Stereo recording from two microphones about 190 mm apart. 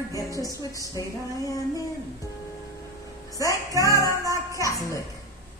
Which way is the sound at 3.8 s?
15° left (ahead or behind).